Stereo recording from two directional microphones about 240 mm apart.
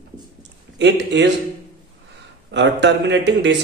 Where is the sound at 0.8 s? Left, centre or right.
Right.